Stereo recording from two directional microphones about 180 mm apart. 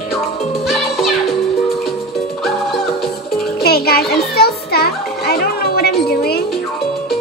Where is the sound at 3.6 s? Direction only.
60° left (ahead or behind).